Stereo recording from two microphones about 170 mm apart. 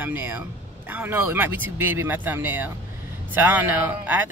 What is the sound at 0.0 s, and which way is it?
Speech, 10° right (ahead or behind).